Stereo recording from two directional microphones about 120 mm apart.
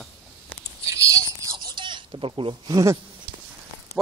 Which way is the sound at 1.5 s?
40° right (ahead or behind).